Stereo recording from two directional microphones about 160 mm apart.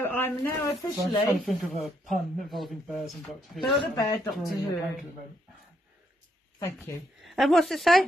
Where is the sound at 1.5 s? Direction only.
Centre (ahead or behind).